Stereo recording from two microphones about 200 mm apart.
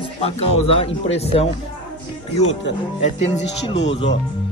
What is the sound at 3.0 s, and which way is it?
Speech, 35° left (ahead or behind).